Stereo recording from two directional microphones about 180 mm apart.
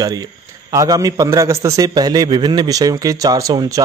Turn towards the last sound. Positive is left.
turn(degrees=-20)  # may be behind; listen again after turning